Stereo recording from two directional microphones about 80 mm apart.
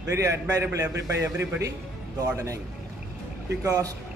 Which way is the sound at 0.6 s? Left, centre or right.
Right.